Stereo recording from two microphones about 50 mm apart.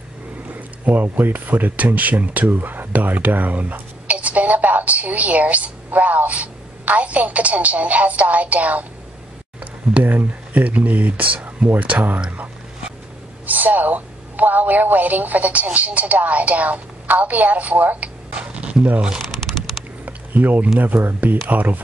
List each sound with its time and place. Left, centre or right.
0.5 s speech: right
10.0 s speech: right
13.5 s speech: right
18.3 s tick-tock: right
18.9 s speech: centre
20.1 s a sound: right
20.8 s speech: right